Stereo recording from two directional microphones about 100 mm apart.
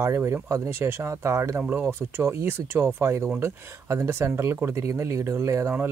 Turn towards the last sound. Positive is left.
turn(degrees=-30)  # may be behind; listen again after turning